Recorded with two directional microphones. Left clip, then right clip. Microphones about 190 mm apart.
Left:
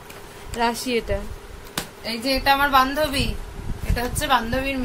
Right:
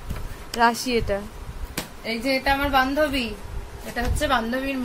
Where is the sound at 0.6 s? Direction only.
Centre (ahead or behind).